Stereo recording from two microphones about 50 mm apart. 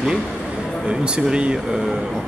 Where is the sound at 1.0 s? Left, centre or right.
Centre.